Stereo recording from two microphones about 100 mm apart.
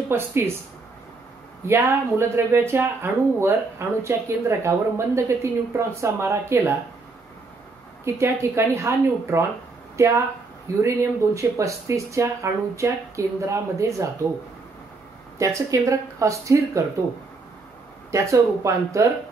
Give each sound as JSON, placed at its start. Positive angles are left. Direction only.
{"t": 0.1, "sound": "speech", "side_deg": -20}
{"t": 1.7, "sound": "speech", "side_deg": -25}
{"t": 8.0, "sound": "speech", "side_deg": -25}
{"t": 15.3, "sound": "speech", "side_deg": -30}
{"t": 18.1, "sound": "speech", "side_deg": -30}